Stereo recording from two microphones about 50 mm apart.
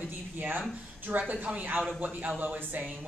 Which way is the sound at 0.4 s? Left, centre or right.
Right.